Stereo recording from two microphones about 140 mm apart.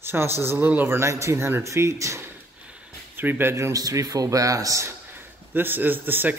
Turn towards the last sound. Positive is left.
turn(degrees=-15)  # may be behind; listen again after turning